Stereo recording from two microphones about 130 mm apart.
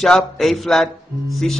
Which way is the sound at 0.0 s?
Centre (ahead or behind).